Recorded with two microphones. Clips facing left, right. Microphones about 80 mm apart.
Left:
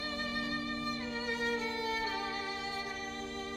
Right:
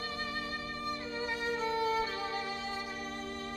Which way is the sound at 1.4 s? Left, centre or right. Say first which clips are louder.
Right 5 dB; right.